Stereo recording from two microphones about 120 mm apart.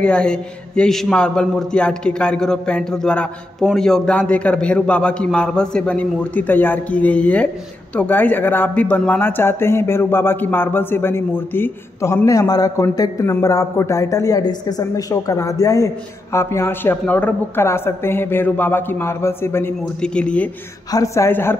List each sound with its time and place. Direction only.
0.0 s a man's voice: 5° left (ahead or behind)
20.0 s a man's voice: 10° left (ahead or behind)
20.9 s speech: 25° left (ahead or behind)